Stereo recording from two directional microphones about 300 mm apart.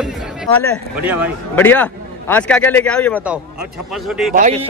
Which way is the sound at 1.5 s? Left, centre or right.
Centre.